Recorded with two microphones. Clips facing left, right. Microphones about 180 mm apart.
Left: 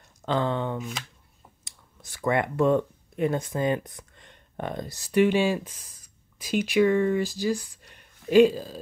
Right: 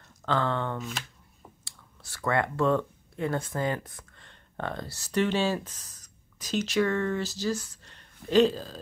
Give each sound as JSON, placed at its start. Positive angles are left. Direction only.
{"t": 0.2, "sound": "speech", "side_deg": 15}